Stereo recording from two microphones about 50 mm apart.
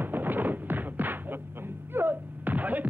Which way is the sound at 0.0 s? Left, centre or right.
Right.